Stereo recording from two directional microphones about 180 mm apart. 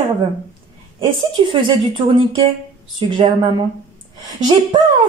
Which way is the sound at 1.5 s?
30° right (ahead or behind).